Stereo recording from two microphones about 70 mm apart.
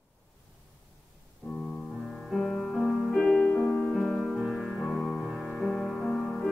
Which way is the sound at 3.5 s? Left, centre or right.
Left.